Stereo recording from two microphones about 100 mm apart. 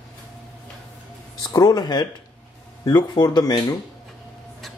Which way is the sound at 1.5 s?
40° left (ahead or behind).